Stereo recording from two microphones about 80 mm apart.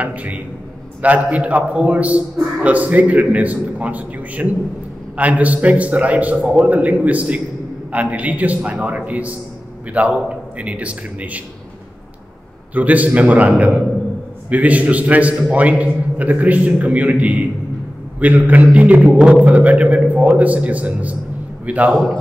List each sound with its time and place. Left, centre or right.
0.0 s a man's voice: centre
12.7 s a man's voice: centre
21.9 s a man's voice: centre